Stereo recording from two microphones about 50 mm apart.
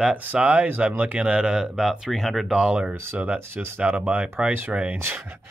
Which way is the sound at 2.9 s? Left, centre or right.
Right.